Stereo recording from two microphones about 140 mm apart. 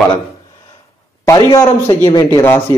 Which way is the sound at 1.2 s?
25° left (ahead or behind).